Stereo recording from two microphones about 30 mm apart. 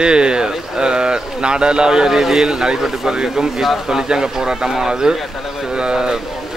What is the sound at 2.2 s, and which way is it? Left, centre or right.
Speech, centre.